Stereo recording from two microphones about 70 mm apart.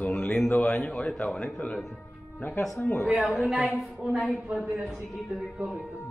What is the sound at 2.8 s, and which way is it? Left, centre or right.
Speech, left.